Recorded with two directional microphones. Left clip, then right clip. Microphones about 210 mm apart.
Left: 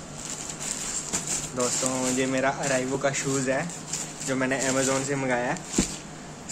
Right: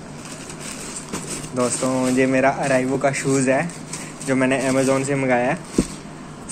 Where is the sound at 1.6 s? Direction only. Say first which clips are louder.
Right 7 dB; 10° right (ahead or behind).